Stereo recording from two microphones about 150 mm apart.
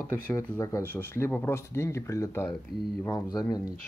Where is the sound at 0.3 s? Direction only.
20° left (ahead or behind).